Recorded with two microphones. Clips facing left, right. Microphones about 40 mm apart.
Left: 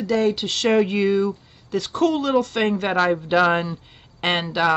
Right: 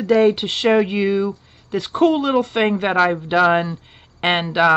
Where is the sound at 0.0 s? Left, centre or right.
Right.